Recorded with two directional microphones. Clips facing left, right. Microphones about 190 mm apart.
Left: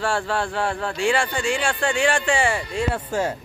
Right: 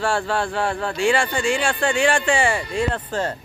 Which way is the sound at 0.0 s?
30° right (ahead or behind).